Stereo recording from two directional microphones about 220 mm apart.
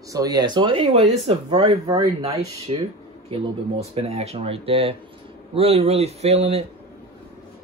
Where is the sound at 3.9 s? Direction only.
30° right (ahead or behind).